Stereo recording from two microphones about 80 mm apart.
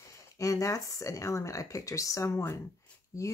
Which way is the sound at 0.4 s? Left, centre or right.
Left.